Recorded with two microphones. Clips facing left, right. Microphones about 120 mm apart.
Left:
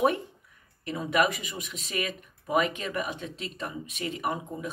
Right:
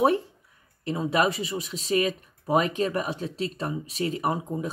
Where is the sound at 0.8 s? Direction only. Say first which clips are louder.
Right 2 dB; 30° right (ahead or behind).